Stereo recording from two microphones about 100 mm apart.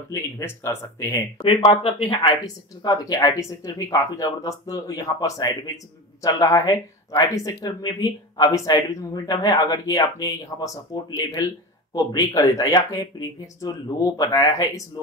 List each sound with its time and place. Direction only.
0.1 s speech: 30° left (ahead or behind)
1.4 s speech: 65° left (ahead or behind)
2.4 s speech: 40° left (ahead or behind)